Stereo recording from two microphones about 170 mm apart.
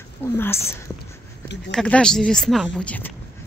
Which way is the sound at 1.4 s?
90° left.